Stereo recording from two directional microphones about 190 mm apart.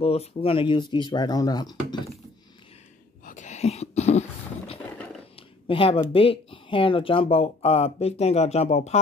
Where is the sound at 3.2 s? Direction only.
40° left (ahead or behind).